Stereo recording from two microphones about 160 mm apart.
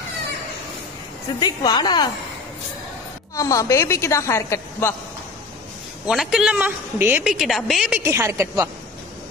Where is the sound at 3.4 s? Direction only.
20° left (ahead or behind).